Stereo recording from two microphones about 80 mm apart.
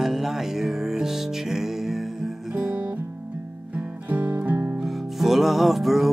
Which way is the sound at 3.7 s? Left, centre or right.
Centre.